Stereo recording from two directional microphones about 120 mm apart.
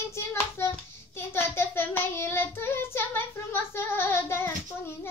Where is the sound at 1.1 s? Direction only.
20° left (ahead or behind).